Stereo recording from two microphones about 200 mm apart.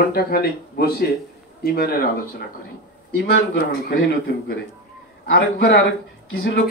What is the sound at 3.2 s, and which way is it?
A man's voice, 55° left (ahead or behind).